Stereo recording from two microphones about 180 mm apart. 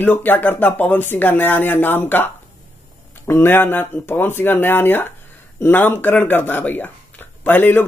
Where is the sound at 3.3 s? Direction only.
10° left (ahead or behind).